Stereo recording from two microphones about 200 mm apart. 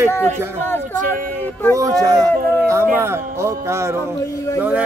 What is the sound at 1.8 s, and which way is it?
Speech, 20° right (ahead or behind).